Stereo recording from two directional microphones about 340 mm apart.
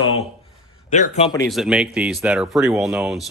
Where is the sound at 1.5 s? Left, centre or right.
Centre.